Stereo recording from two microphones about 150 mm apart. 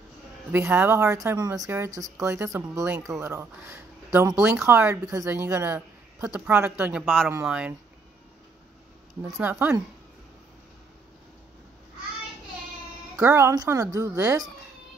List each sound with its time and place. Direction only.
0.5 s speech: 15° right (ahead or behind)
7.0 s speech: centre (ahead or behind)
7.2 s speech: 10° right (ahead or behind)
9.2 s speech: 10° right (ahead or behind)
13.1 s speech: 15° right (ahead or behind)